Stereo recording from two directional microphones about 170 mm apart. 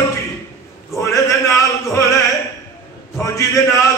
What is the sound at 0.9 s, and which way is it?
Male singing, 15° left (ahead or behind).